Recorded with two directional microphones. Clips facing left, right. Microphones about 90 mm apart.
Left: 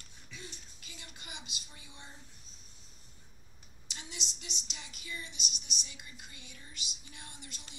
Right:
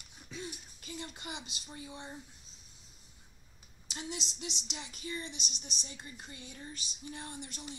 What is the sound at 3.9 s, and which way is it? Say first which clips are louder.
Speech: right 7 dB; 30° right (ahead or behind).